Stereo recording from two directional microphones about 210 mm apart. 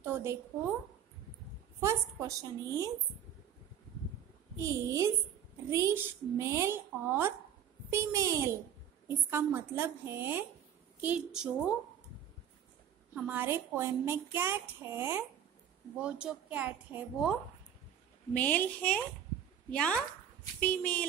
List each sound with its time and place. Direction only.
0.0 s a sound: 10° right (ahead or behind)
1.8 s speech: 15° right (ahead or behind)
4.6 s a woman's voice: 15° right (ahead or behind)
13.1 s a woman's voice: 10° right (ahead or behind)
18.3 s a woman's voice: 5° left (ahead or behind)